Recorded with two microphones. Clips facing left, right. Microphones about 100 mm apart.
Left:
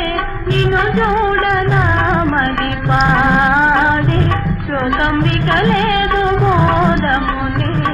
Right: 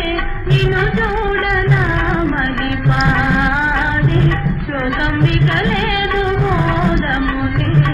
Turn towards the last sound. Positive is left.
turn(degrees=40)  # may be behind; listen again after turning